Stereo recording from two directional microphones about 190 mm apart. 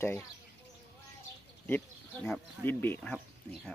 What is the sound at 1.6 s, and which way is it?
Speech, 5° left (ahead or behind).